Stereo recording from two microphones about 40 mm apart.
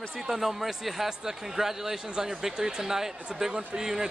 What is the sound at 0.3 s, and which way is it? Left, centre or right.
Speech, centre.